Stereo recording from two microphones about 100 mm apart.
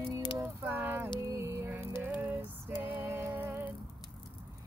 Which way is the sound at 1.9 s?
20° right (ahead or behind).